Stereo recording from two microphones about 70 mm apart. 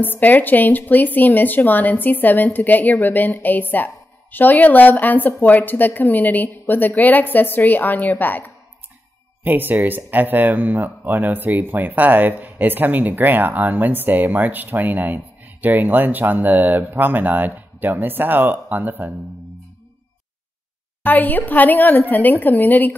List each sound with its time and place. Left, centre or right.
0.0 s a woman's voice: left
9.4 s speech: right
21.0 s a woman's voice: left